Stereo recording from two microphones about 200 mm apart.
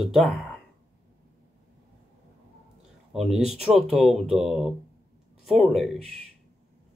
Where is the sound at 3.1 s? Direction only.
Centre (ahead or behind).